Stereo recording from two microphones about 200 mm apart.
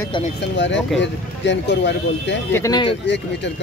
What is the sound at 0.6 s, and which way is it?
Speech, 65° left (ahead or behind).